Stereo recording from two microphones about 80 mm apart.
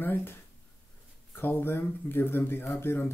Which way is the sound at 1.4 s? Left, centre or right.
Left.